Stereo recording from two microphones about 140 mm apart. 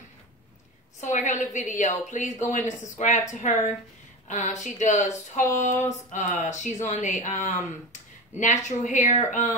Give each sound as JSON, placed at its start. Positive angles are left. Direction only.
{"t": 1.0, "sound": "speech", "side_deg": 65}